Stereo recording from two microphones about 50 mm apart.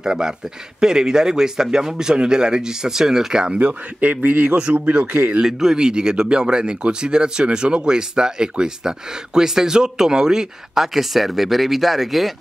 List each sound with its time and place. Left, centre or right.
0.0 s speech: centre
3.6 s a man's voice: right
5.4 s speech: centre